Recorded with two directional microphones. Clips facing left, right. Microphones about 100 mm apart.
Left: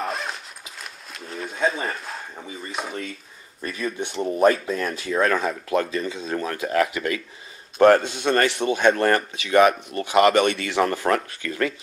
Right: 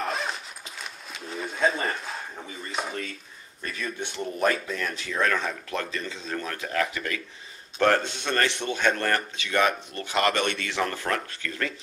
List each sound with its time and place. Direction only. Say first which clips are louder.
0.0 s a sound: left 1 dB; centre (ahead or behind)
2.4 s speech: left 1 dB; 5° left (ahead or behind)
4.2 s speech: left 7 dB; 30° left (ahead or behind)
4.6 s speech: left 6 dB; 40° left (ahead or behind)
5.4 s speech: left 7 dB; 10° left (ahead or behind)
8.2 s a man's voice: left 6 dB; 50° left (ahead or behind)
8.5 s speech: left 6 dB; 10° left (ahead or behind)